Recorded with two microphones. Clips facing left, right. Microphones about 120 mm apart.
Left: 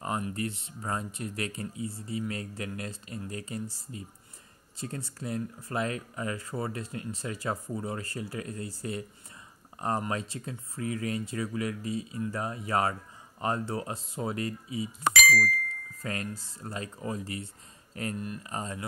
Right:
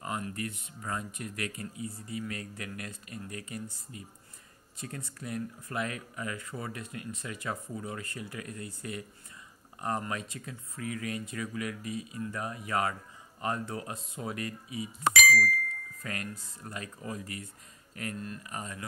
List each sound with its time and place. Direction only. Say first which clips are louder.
0.0 s speech: left 4 dB; 30° left (ahead or behind)
15.2 s speech: even; centre (ahead or behind)
16.0 s speech: left 4 dB; 30° left (ahead or behind)